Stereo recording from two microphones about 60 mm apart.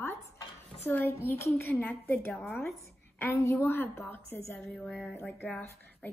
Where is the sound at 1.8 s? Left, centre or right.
Left.